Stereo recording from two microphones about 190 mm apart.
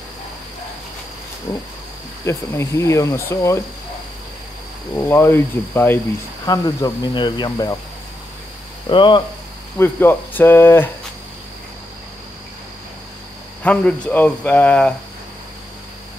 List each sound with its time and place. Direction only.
1.5 s speech: 20° left (ahead or behind)
4.9 s speech: 10° left (ahead or behind)
8.8 s speech: 25° left (ahead or behind)
9.8 s speech: 10° left (ahead or behind)
13.6 s speech: 5° left (ahead or behind)